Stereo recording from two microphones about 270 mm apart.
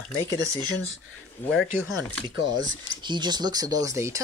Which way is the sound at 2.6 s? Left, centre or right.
Centre.